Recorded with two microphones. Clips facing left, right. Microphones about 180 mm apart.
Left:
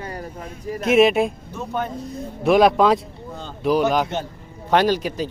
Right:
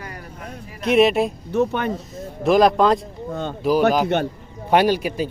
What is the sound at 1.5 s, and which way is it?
Speech, 70° right (ahead or behind).